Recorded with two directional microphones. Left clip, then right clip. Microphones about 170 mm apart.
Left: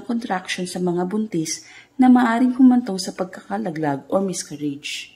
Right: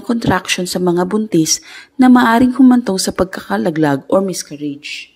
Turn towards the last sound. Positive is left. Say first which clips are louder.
# right 3 dB
turn(degrees=-15)  # may be behind; listen again after turning